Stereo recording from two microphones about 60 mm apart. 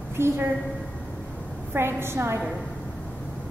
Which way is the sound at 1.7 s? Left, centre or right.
Right.